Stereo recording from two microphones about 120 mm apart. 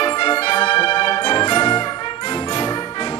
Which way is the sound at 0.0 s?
50° left (ahead or behind).